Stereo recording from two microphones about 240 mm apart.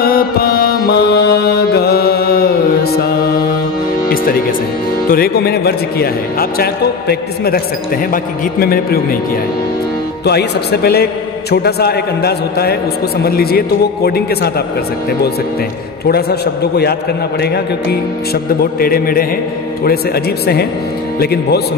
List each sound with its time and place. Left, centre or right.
0.0 s music: left
4.1 s speech: left
10.2 s speech: left
16.1 s speech: left
21.2 s speech: left